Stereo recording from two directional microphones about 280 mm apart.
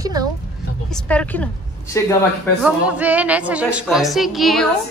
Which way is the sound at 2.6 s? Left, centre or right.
Centre.